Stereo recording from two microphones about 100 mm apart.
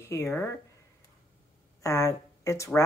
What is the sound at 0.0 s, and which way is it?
Speech, 25° left (ahead or behind).